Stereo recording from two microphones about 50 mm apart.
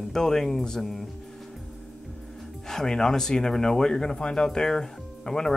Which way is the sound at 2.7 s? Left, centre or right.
Centre.